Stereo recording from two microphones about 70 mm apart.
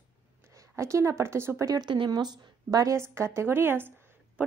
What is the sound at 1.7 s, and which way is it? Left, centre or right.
Speech, right.